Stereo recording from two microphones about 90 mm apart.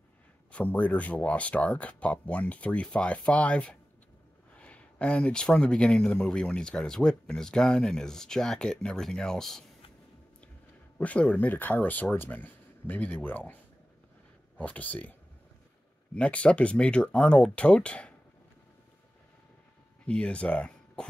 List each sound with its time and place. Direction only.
0.5 s speech: 15° left (ahead or behind)
11.0 s speech: 15° left (ahead or behind)
14.6 s speech: 15° left (ahead or behind)
16.2 s speech: 10° left (ahead or behind)
20.1 s speech: 10° left (ahead or behind)